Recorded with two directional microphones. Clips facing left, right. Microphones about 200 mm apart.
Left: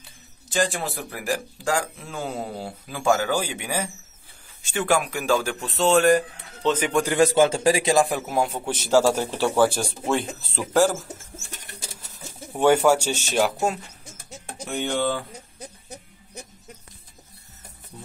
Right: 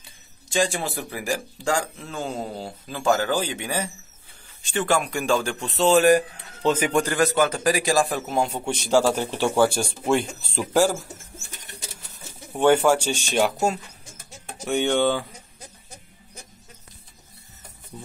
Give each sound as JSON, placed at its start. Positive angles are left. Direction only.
{"t": 0.5, "sound": "a man's voice", "side_deg": 0}
{"t": 7.2, "sound": "a man's voice", "side_deg": 25}
{"t": 12.5, "sound": "a man's voice", "side_deg": 10}
{"t": 14.6, "sound": "speech", "side_deg": 0}